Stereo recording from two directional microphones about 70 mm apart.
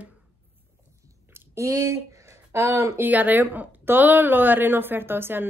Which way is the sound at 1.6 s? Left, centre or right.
Right.